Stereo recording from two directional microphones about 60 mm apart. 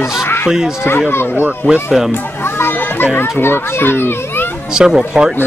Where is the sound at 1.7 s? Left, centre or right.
Centre.